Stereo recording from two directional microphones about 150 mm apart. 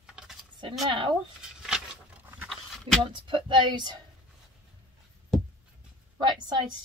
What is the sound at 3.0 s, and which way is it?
Speech, 35° right (ahead or behind).